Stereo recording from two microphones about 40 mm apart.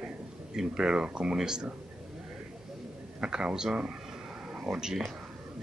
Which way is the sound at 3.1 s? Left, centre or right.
Right.